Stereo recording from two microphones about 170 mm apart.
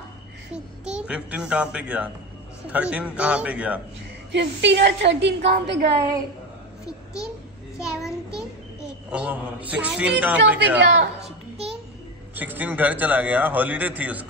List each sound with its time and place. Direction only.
0.5 s a child's voice: 5° right (ahead or behind)
4.3 s a woman's voice: 90° right
7.7 s child singing: 5° right (ahead or behind)
9.1 s a man's voice: 10° right (ahead or behind)
10.8 s a woman's voice: 90° right
12.4 s a man's voice: 10° right (ahead or behind)